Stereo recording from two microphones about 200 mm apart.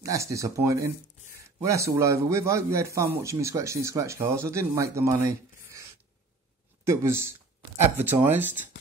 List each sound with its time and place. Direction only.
0.0 s a man's voice: 15° right (ahead or behind)